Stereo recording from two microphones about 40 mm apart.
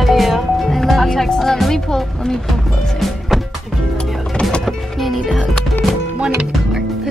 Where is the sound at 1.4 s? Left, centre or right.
Centre.